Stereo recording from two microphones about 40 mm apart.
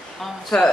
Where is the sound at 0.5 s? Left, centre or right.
Centre.